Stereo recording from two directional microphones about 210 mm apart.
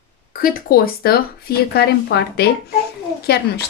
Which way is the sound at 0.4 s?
45° left (ahead or behind).